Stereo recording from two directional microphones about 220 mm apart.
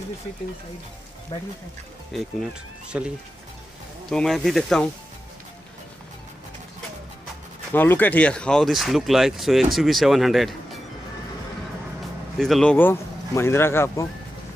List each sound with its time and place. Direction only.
1.3 s speech: 25° left (ahead or behind)
2.9 s speech: 5° right (ahead or behind)
7.7 s speech: 10° left (ahead or behind)
12.4 s speech: centre (ahead or behind)